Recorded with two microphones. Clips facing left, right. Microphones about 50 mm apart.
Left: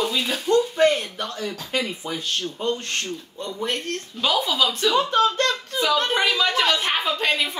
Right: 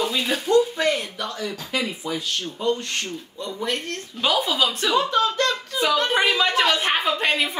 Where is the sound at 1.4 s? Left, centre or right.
Right.